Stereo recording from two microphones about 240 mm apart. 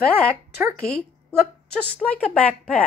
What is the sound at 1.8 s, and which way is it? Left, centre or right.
Speech, centre.